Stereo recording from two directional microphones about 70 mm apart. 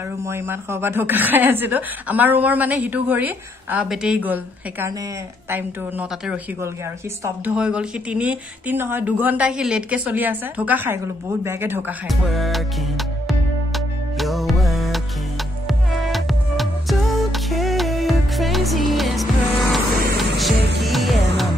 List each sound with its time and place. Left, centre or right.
0.2 s speech: right
3.9 s speech: centre
4.2 s speech: right
7.5 s speech: centre
8.7 s speech: right
9.6 s speech: centre
9.8 s speech: right
10.9 s speech: right
12.1 s music: centre
16.1 s music: centre